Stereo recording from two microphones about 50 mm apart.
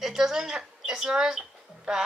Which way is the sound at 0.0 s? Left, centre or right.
Centre.